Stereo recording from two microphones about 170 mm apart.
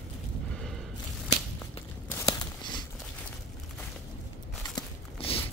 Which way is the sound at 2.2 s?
25° left (ahead or behind).